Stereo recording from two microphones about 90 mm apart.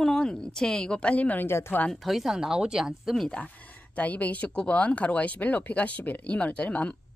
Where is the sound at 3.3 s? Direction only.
15° left (ahead or behind).